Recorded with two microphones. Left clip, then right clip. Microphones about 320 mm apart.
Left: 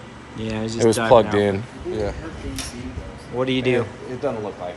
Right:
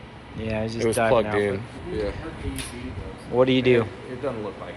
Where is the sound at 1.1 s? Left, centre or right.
Left.